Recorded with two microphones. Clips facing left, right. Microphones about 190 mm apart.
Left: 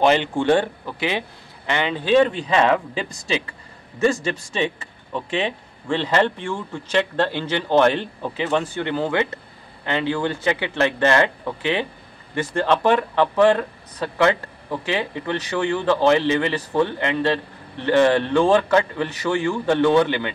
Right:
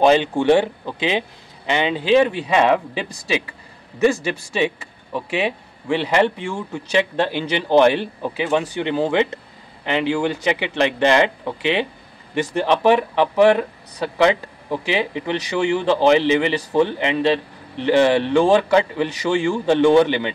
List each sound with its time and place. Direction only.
0.0 s speech: 15° right (ahead or behind)